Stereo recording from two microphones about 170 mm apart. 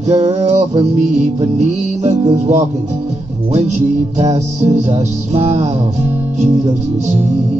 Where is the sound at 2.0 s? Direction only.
40° right (ahead or behind).